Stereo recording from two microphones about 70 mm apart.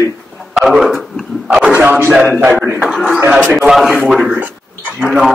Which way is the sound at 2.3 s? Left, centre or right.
Right.